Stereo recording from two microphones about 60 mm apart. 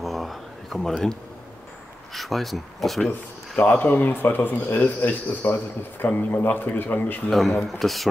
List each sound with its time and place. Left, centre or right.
0.0 s a sound: centre
2.1 s speech: centre
3.6 s speech: left
7.2 s speech: centre